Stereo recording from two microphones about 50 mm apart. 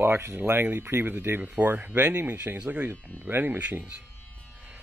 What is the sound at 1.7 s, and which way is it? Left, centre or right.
Speech, right.